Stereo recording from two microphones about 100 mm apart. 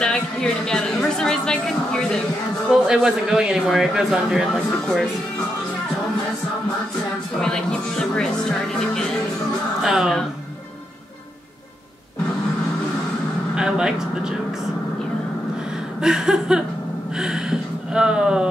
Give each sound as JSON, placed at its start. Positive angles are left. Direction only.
{"t": 0.0, "sound": "speech", "side_deg": 5}
{"t": 2.7, "sound": "a man's voice", "side_deg": -5}
{"t": 8.2, "sound": "speech", "side_deg": 5}
{"t": 9.8, "sound": "a man's voice", "side_deg": -5}
{"t": 13.6, "sound": "speech", "side_deg": -5}
{"t": 16.0, "sound": "speech", "side_deg": -5}
{"t": 17.2, "sound": "a sound", "side_deg": -5}